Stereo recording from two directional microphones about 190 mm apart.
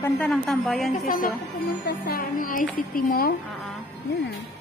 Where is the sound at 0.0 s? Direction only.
5° left (ahead or behind).